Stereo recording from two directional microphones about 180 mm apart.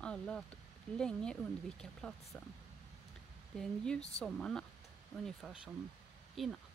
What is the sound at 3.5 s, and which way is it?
Speech, 5° left (ahead or behind).